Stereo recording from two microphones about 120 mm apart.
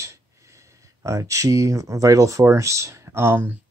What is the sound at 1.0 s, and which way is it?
Speech, 25° right (ahead or behind).